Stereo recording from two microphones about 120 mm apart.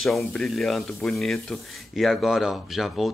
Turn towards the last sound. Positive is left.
turn(degrees=0)  # may be behind; listen again after turning